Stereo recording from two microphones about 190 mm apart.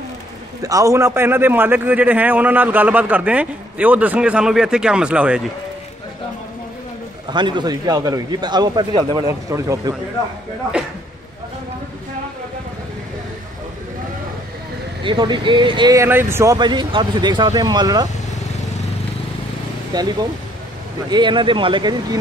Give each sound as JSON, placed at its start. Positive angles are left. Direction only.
{"t": 0.6, "sound": "a man's voice", "side_deg": -20}
{"t": 7.2, "sound": "speech", "side_deg": -25}
{"t": 15.0, "sound": "speech", "side_deg": -25}
{"t": 19.9, "sound": "speech", "side_deg": -20}